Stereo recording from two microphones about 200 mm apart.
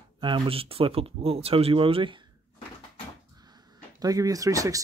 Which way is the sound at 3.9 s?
20° right (ahead or behind).